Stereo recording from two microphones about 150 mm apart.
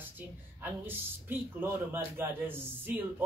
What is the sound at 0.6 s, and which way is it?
A man's voice, 15° right (ahead or behind).